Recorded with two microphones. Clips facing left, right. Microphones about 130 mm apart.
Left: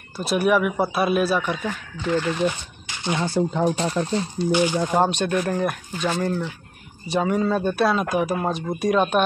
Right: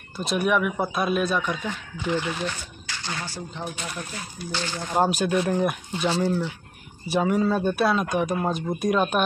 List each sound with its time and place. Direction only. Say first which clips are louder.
0.1 s speech: left 3 dB; 5° left (ahead or behind)
2.0 s speech: left 4 dB; 15° right (ahead or behind)
2.4 s speech: left 7 dB; 20° left (ahead or behind)
3.6 s speech: left 11 dB; 35° left (ahead or behind)
4.5 s speech: left 11 dB; 15° left (ahead or behind)
5.0 s speech: left 1 dB; 5° right (ahead or behind)